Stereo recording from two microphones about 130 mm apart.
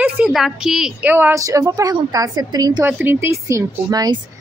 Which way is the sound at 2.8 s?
15° right (ahead or behind).